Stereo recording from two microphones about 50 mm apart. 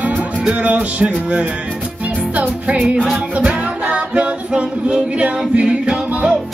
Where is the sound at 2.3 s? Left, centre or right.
Right.